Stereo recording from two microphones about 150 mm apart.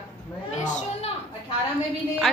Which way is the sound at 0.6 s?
55° left (ahead or behind).